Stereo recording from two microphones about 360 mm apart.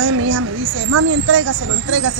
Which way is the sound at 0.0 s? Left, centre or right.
Right.